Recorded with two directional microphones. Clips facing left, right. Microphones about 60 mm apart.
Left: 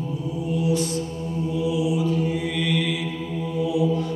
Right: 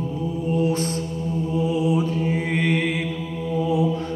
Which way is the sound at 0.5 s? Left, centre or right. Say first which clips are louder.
Even; right.